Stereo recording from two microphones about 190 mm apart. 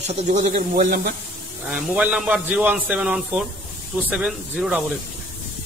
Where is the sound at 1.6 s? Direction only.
5° right (ahead or behind).